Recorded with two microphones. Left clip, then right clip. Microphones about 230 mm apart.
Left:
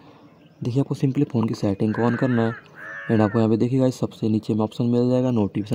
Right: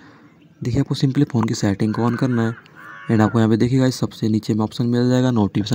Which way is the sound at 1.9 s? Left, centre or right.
Right.